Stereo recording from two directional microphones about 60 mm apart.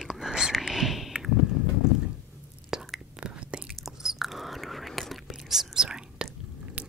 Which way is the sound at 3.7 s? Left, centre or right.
Centre.